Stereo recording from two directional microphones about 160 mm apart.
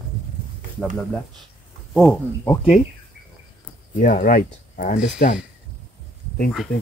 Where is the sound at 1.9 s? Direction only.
5° left (ahead or behind).